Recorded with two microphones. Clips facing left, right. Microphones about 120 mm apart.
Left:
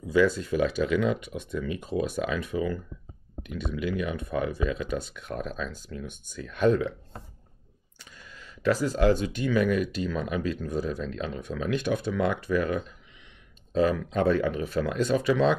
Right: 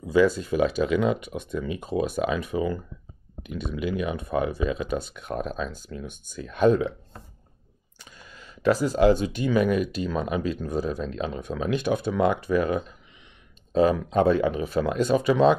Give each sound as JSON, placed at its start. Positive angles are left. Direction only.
{"t": 0.0, "sound": "a sound", "side_deg": -20}
{"t": 0.3, "sound": "speech", "side_deg": -20}
{"t": 1.5, "sound": "speech", "side_deg": -25}
{"t": 8.2, "sound": "speech", "side_deg": -20}